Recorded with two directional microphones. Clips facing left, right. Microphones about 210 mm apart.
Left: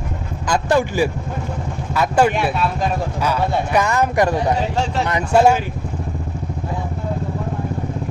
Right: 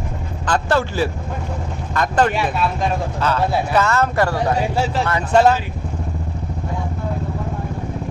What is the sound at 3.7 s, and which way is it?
Speech, 15° left (ahead or behind).